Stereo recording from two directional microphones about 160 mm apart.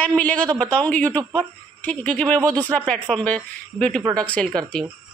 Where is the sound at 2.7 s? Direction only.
5° left (ahead or behind).